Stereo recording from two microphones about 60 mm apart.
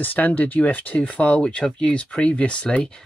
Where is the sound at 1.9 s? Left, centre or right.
Left.